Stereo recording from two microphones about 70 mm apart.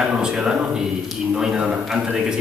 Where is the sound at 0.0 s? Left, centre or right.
Centre.